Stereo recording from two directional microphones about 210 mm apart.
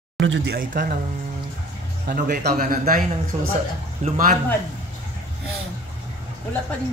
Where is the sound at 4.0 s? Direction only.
40° right (ahead or behind).